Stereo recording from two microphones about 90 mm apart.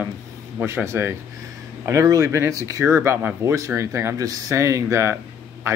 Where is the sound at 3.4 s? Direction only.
35° right (ahead or behind).